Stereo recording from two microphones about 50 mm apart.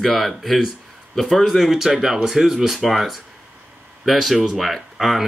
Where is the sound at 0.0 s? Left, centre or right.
Centre.